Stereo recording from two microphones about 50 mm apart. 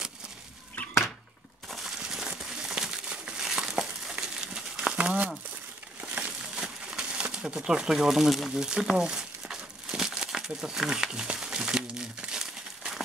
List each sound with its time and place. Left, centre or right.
1.7 s crumpling: centre
4.9 s a sound: right
7.3 s speech: centre